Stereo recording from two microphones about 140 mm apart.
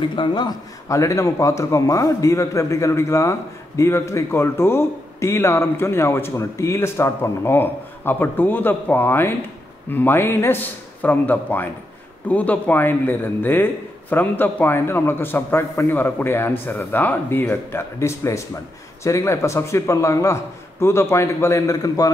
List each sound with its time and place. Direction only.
0.0 s a man's voice: 35° left (ahead or behind)